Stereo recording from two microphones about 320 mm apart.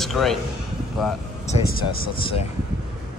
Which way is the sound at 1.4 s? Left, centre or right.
Left.